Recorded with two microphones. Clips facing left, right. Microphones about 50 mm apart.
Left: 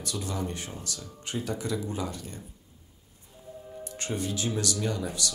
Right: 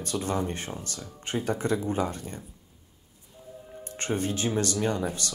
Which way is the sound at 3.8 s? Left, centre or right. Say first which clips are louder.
Right 4 dB; right.